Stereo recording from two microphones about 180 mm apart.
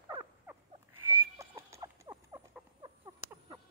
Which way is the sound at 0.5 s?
10° right (ahead or behind).